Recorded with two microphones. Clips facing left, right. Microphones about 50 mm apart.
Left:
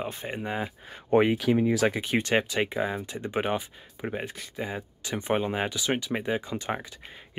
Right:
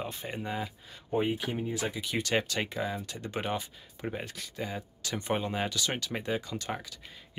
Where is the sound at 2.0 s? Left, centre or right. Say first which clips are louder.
Left 5 dB; left.